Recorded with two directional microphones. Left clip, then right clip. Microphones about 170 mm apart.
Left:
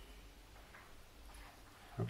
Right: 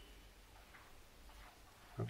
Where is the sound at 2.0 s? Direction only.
5° right (ahead or behind).